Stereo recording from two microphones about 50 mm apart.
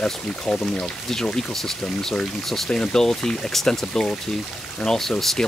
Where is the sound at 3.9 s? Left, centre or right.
Centre.